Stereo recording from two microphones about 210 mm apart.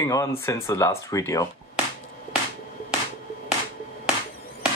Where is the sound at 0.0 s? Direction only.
15° left (ahead or behind).